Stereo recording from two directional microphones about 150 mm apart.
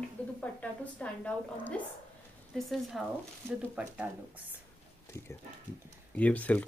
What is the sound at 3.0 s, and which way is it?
Speech, centre (ahead or behind).